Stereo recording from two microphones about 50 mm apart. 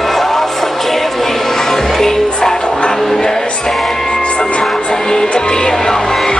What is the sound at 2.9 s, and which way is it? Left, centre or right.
Music, centre.